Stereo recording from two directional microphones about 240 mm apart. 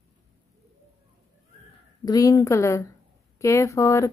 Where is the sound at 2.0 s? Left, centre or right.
Centre.